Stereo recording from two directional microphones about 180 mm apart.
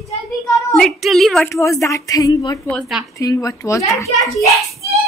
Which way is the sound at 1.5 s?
15° left (ahead or behind).